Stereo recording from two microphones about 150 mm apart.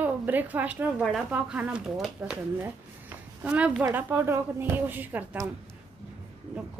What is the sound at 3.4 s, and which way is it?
A woman's voice, 10° right (ahead or behind).